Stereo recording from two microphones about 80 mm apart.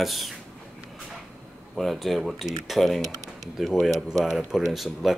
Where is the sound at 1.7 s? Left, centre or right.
Centre.